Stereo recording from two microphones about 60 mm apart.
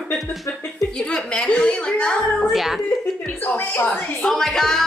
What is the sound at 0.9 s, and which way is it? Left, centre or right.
A woman's voice, centre.